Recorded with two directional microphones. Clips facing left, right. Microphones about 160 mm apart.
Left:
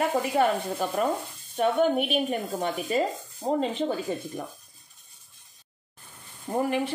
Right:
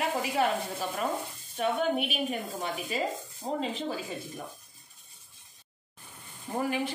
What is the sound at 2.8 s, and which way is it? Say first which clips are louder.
Speech: left 6 dB; 45° left (ahead or behind).